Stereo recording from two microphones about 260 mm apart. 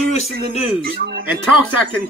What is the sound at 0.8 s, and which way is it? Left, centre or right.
Speech, right.